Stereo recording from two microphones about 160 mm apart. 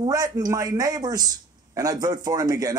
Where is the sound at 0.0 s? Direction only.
25° right (ahead or behind).